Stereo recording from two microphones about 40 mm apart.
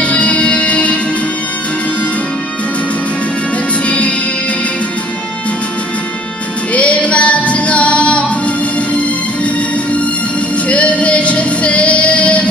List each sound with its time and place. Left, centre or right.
0.0 s music: left
6.7 s music: left
10.7 s music: left